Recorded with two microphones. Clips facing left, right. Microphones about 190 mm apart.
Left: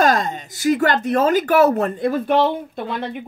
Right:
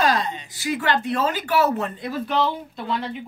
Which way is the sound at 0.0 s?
45° left (ahead or behind).